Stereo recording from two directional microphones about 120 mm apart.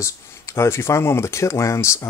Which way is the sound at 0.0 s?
25° left (ahead or behind).